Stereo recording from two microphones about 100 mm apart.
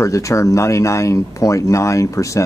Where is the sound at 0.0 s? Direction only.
30° left (ahead or behind).